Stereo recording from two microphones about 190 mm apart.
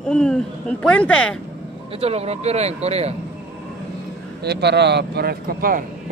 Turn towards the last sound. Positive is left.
turn(degrees=-50)  # may be behind; listen again after turning